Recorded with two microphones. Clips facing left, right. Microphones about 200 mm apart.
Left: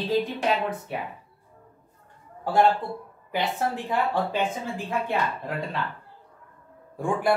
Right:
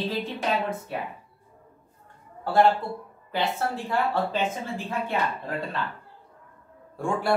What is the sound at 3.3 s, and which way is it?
Speech, 15° left (ahead or behind).